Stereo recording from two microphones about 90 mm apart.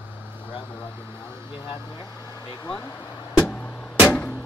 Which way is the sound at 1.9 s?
50° left (ahead or behind).